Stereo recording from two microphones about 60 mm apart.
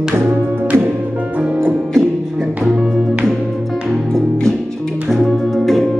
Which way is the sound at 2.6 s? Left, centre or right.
Centre.